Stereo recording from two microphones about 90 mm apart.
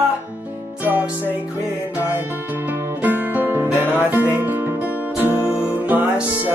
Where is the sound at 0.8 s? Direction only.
20° right (ahead or behind).